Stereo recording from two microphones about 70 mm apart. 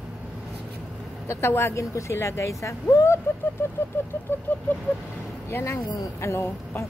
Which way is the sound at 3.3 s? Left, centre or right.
Left.